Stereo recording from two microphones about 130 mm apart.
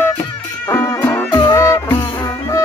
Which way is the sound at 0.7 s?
25° left (ahead or behind).